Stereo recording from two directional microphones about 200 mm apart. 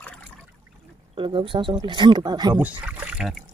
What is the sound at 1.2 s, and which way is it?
Speech, 25° right (ahead or behind).